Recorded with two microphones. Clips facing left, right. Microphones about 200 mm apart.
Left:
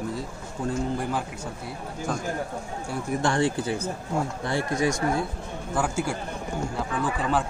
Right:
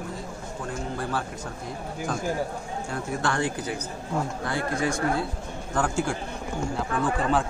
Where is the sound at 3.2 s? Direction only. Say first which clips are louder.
Left 4 dB; 25° left (ahead or behind).